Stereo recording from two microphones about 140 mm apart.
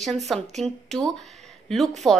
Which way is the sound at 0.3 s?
5° left (ahead or behind).